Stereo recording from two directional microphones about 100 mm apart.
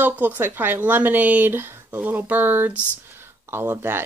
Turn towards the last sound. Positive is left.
turn(degrees=-25)  # may be behind; listen again after turning